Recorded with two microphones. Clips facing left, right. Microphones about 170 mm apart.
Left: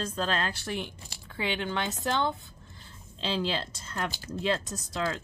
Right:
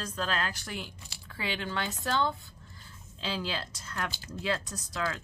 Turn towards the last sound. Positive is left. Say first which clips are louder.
# left 3 dB
turn(degrees=25)  # may be behind; listen again after turning